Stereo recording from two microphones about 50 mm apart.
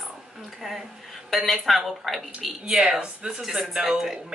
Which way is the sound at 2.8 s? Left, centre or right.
Centre.